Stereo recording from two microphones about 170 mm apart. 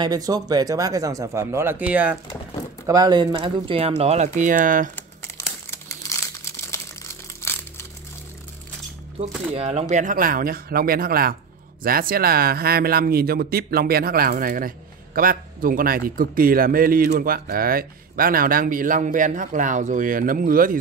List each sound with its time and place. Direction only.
0.0 s speech: 20° right (ahead or behind)
2.9 s speech: 25° right (ahead or behind); by 4.9 s 50° right (ahead or behind)
4.9 s crumpling: 15° left (ahead or behind)
7.4 s crushing: 15° left (ahead or behind)
9.5 s a man's voice: 35° right (ahead or behind); by 20.8 s 55° right (ahead or behind)